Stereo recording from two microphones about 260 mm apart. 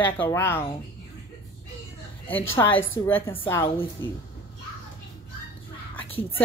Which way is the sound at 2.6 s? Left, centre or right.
Centre.